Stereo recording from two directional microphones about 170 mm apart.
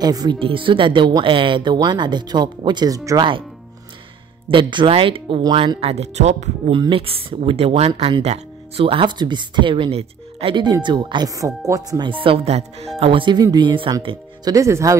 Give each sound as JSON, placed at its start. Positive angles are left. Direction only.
{"t": 0.0, "sound": "speech", "side_deg": -25}
{"t": 4.5, "sound": "speech", "side_deg": -30}
{"t": 6.7, "sound": "speech", "side_deg": -30}